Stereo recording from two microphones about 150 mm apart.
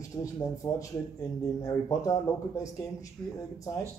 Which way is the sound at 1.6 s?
20° left (ahead or behind).